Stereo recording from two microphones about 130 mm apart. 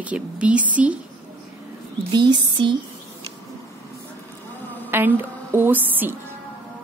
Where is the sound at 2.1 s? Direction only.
35° right (ahead or behind).